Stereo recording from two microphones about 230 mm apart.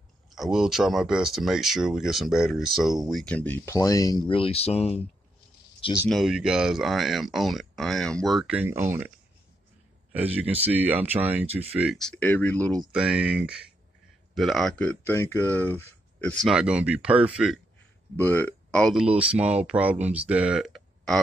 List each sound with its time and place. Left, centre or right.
0.3 s speech: centre; by 6.0 s left
6.0 s speech: centre
10.1 s speech: centre
18.1 s speech: centre